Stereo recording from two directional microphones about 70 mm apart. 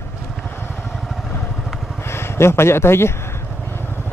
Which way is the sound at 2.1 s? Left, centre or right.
Left.